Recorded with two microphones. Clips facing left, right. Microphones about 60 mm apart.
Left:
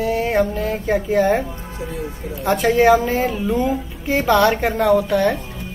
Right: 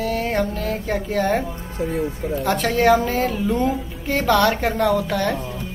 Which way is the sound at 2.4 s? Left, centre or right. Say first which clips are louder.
Left 3 dB; centre.